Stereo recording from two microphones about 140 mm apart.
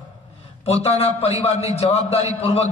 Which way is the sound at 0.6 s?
50° left (ahead or behind).